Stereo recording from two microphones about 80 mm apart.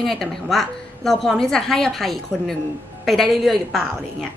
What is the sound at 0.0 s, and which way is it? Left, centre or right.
A woman's voice, centre.